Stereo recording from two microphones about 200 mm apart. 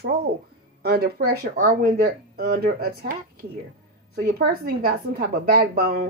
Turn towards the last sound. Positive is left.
turn(degrees=-50)  # may be behind; listen again after turning